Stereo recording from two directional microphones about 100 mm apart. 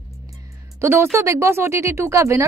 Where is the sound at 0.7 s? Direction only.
25° right (ahead or behind).